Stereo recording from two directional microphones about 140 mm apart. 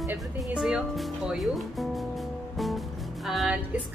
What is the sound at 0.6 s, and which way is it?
Speech, 5° right (ahead or behind).